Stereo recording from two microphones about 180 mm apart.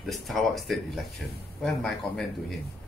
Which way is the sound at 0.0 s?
Centre (ahead or behind).